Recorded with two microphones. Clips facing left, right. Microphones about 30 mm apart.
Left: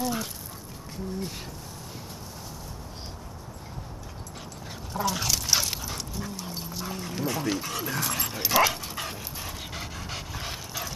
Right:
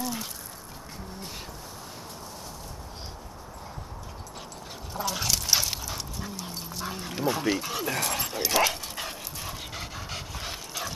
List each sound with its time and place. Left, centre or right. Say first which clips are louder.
0.0 s a sound: left 3 dB; centre
4.9 s dog: left 2 dB; centre
6.9 s dog: right 3 dB; centre